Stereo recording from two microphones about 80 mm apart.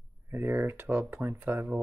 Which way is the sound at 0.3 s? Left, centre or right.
Right.